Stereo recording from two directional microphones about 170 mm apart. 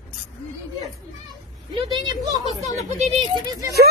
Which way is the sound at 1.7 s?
25° right (ahead or behind).